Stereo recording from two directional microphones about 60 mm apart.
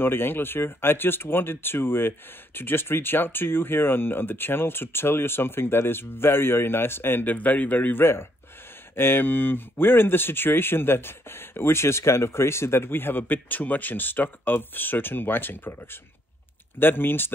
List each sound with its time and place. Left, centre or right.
0.0 s speech: left
8.0 s speech: left